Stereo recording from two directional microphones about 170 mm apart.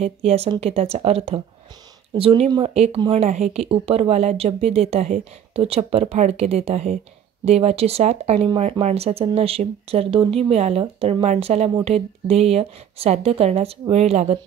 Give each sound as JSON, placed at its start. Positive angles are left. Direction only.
{"t": 0.0, "sound": "speech", "side_deg": -40}